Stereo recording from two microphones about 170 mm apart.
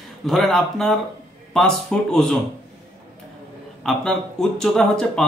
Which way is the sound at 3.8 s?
5° left (ahead or behind).